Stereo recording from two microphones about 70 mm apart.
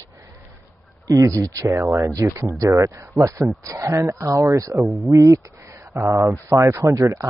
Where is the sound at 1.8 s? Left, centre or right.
Right.